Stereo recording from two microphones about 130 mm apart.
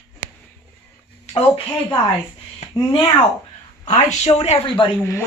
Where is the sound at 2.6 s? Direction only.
65° left (ahead or behind).